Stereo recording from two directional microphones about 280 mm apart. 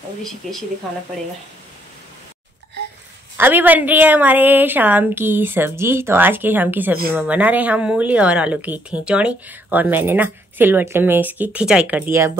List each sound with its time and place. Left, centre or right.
0.2 s speech: centre
3.3 s a woman's voice: centre